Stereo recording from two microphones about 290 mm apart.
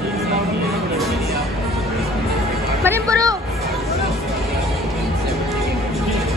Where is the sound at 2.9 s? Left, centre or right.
Centre.